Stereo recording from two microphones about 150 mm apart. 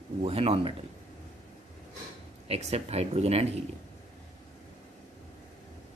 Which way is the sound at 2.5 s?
45° right (ahead or behind).